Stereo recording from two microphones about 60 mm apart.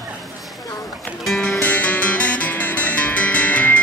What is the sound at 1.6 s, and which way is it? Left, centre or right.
Music, left.